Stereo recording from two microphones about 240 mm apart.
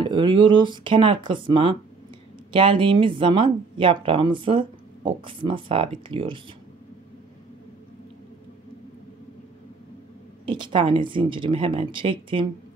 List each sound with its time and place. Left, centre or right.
0.0 s a woman's voice: centre
10.4 s a woman's voice: centre